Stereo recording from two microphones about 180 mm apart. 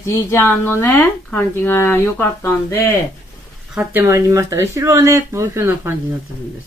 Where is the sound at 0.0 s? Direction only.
15° left (ahead or behind).